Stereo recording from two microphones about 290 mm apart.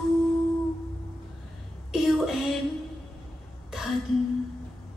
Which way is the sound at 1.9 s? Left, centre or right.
Centre.